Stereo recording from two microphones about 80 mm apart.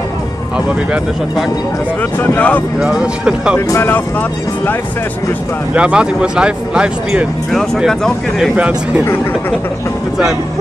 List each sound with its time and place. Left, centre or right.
2.1 s speech: left
2.8 s speech: centre
3.5 s speech: left
5.8 s speech: centre
7.5 s speech: centre
8.5 s speech: centre